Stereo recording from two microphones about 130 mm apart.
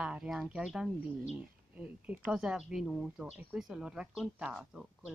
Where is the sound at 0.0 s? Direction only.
5° right (ahead or behind).